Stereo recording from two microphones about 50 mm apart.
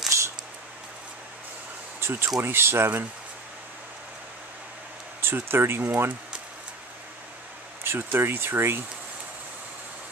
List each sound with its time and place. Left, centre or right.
0.1 s scissors: right
2.0 s speech: right
5.2 s speech: right
7.8 s speech: right